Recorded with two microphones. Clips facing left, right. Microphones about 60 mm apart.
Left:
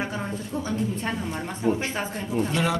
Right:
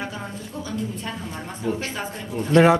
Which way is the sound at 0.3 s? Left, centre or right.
Left.